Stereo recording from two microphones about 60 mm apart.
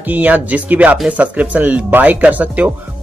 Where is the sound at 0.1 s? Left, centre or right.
Right.